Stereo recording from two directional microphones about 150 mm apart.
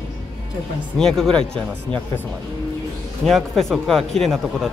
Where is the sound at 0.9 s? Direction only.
5° left (ahead or behind).